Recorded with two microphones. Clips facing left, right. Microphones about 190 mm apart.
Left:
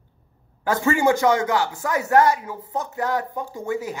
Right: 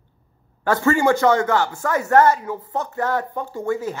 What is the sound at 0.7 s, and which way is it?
Speech, 15° left (ahead or behind).